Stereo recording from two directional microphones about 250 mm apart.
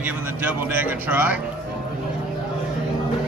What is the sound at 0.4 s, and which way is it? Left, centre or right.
Speech, centre.